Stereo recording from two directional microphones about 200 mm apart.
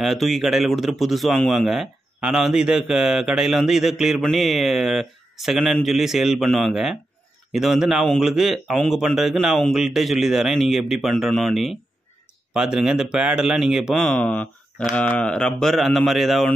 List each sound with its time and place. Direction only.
0.0 s speech: centre (ahead or behind)